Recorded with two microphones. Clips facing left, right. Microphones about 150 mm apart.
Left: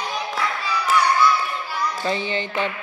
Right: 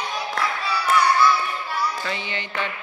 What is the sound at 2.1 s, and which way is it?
Mantra, 30° left (ahead or behind).